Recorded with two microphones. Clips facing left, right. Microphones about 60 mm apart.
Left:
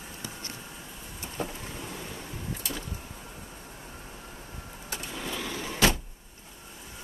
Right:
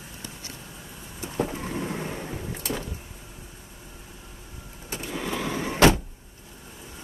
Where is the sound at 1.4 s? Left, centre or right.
Right.